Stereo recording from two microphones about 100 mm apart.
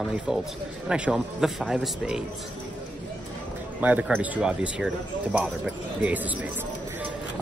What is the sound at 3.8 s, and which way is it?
A man's voice, 15° right (ahead or behind).